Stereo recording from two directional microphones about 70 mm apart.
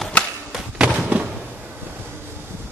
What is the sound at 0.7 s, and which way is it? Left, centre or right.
Slam, centre.